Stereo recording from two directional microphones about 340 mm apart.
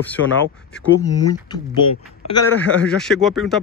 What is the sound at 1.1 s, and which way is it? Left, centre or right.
Speech, left.